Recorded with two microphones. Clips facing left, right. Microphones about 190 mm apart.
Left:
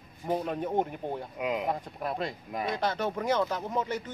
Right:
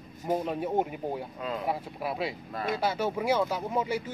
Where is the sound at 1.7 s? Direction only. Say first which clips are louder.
Even; 5° right (ahead or behind).